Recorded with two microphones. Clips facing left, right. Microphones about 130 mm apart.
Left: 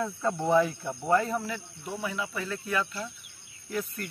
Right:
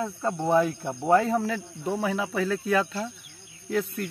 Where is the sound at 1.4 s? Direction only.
90° right.